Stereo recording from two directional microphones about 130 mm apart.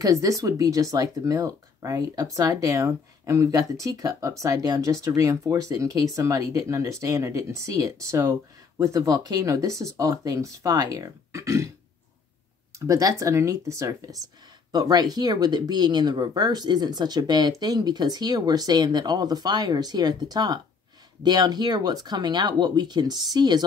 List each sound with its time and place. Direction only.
0.0 s speech: 25° right (ahead or behind)
12.7 s speech: 25° right (ahead or behind)